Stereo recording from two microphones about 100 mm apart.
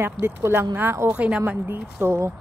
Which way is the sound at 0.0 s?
25° right (ahead or behind).